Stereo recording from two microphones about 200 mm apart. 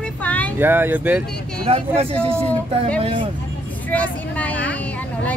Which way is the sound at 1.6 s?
30° right (ahead or behind).